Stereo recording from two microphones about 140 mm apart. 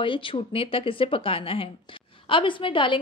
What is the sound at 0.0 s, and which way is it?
A woman's voice, 35° left (ahead or behind).